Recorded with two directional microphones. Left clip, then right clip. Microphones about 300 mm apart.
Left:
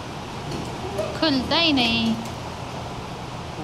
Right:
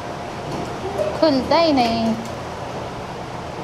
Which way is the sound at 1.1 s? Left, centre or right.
Centre.